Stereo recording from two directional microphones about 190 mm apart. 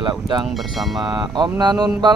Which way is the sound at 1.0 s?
25° right (ahead or behind).